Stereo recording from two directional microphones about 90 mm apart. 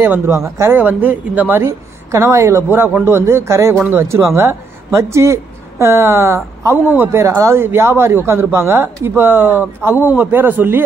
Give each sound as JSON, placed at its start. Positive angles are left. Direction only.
{"t": 0.0, "sound": "speech", "side_deg": -30}
{"t": 0.7, "sound": "speech", "side_deg": -20}
{"t": 1.6, "sound": "a man's voice", "side_deg": -35}
{"t": 7.2, "sound": "speech", "side_deg": -35}